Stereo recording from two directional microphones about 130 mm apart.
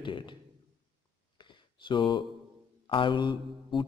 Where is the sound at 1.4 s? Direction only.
35° left (ahead or behind).